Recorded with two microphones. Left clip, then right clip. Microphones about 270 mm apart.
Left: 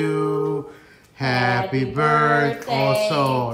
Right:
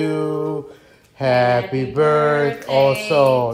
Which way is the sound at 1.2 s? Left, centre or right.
Centre.